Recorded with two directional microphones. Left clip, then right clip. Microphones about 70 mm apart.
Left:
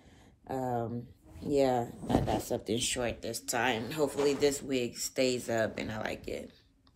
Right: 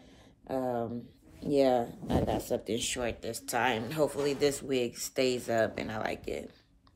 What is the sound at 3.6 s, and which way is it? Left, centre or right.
Speech, right.